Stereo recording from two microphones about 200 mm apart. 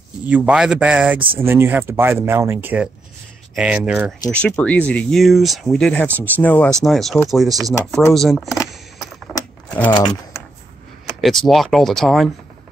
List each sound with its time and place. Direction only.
0.3 s speech: 5° right (ahead or behind)
4.3 s speech: 5° left (ahead or behind)
9.3 s typewriter: 20° left (ahead or behind)
11.1 s speech: centre (ahead or behind)